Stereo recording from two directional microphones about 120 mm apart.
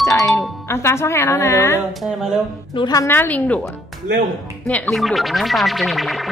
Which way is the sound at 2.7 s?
35° left (ahead or behind).